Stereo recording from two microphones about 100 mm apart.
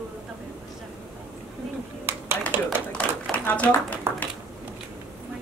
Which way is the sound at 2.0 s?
25° right (ahead or behind).